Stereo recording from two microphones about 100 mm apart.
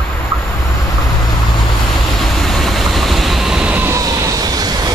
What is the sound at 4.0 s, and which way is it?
Vehicle, 35° right (ahead or behind).